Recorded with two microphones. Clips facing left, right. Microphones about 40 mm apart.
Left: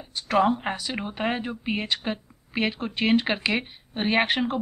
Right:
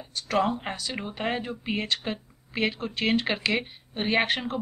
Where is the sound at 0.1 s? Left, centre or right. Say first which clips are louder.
Left 4 dB; centre.